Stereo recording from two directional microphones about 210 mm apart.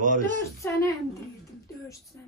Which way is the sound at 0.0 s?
40° right (ahead or behind).